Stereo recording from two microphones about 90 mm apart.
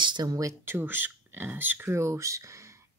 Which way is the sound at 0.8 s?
20° right (ahead or behind).